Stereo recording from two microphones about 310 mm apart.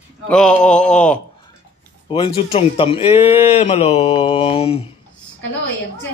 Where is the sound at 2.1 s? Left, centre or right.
Centre.